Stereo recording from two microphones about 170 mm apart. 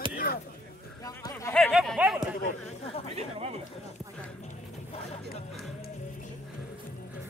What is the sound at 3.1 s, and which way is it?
Speech, 35° right (ahead or behind).